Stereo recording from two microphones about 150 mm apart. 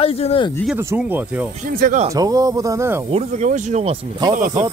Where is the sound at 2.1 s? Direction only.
25° right (ahead or behind).